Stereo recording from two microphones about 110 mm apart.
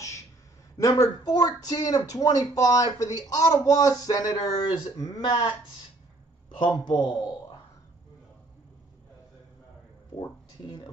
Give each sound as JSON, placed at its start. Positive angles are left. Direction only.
{"t": 0.7, "sound": "speech", "side_deg": 30}
{"t": 6.5, "sound": "speech", "side_deg": 45}
{"t": 10.6, "sound": "speech", "side_deg": 40}